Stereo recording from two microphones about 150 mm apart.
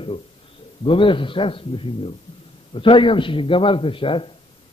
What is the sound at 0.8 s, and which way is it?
A man's voice, 35° left (ahead or behind).